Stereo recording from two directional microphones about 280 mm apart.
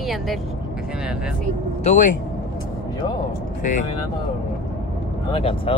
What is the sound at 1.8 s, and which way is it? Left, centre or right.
Speech, left.